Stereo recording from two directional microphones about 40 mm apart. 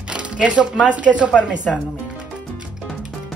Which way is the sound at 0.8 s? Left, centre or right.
Right.